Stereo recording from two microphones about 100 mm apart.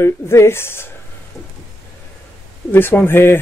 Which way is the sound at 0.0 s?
25° left (ahead or behind).